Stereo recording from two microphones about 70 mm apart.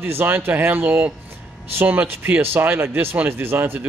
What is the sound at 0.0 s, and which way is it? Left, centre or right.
Speech, right.